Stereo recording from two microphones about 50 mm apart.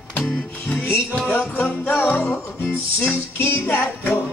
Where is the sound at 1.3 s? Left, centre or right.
Left.